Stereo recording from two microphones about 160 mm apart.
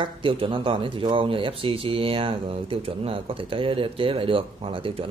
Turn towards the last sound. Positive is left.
turn(degrees=-35)  # may be behind; listen again after turning